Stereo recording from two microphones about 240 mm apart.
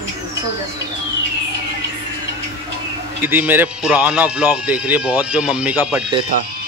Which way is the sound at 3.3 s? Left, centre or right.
Centre.